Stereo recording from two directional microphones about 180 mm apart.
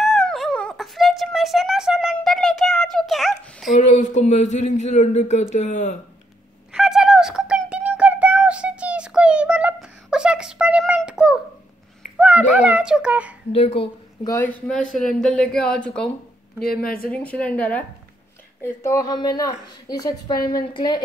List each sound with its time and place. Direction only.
0.0 s a sound: centre (ahead or behind)
3.7 s speech: 40° left (ahead or behind)
6.7 s a sound: 5° right (ahead or behind)
12.2 s speech: 5° right (ahead or behind)
13.5 s speech: 35° left (ahead or behind)
14.2 s speech: 15° left (ahead or behind)
16.6 s a woman's voice: 55° left (ahead or behind)
17.1 s a woman's voice: 5° left (ahead or behind); by 21.0 s 25° left (ahead or behind)